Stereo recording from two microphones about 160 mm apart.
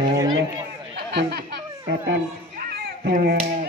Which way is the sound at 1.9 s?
75° right (ahead or behind).